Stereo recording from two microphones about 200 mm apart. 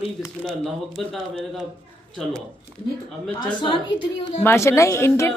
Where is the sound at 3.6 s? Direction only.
25° left (ahead or behind).